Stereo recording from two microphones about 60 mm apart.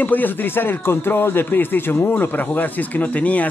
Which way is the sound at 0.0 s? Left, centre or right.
Left.